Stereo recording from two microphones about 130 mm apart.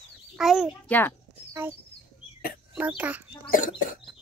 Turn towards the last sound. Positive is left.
turn(degrees=90)